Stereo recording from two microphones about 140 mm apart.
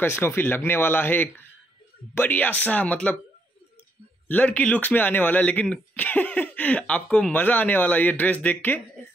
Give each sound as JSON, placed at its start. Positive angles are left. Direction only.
{"t": 0.0, "sound": "speech", "side_deg": 15}
{"t": 4.3, "sound": "speech", "side_deg": 10}